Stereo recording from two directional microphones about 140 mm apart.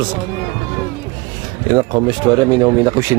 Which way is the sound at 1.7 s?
30° right (ahead or behind).